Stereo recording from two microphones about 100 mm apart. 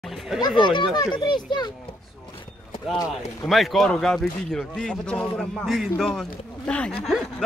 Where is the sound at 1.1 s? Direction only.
50° left (ahead or behind).